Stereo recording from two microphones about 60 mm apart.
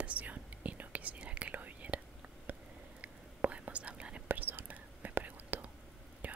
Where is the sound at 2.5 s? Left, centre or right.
Right.